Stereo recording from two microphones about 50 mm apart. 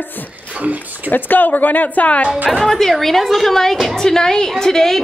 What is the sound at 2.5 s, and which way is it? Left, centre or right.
A woman's voice, centre.